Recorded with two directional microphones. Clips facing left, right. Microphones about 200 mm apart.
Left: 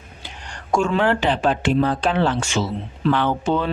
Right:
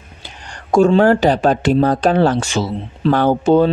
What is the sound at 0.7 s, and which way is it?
Speech, 35° right (ahead or behind).